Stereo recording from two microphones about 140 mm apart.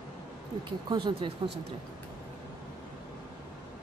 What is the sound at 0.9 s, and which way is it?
Speech, 35° right (ahead or behind).